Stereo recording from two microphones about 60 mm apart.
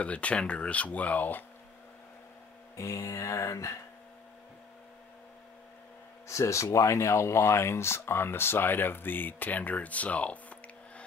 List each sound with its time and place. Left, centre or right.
0.0 s speech: left
2.7 s mantra: left
6.2 s speech: left